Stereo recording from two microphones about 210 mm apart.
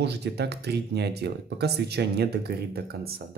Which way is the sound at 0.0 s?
50° right (ahead or behind).